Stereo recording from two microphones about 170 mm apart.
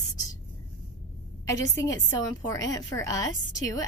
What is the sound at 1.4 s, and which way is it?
A woman's voice, 20° left (ahead or behind).